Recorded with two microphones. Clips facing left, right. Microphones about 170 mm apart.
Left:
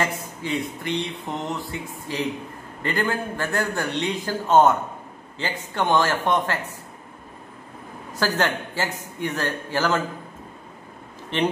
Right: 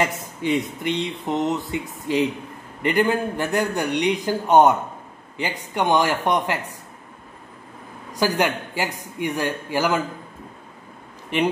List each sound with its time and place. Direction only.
0.0 s a man's voice: 20° right (ahead or behind)
8.1 s a man's voice: 15° right (ahead or behind)